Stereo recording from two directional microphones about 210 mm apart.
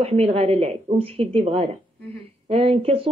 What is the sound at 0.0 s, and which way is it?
A woman's voice, 30° right (ahead or behind).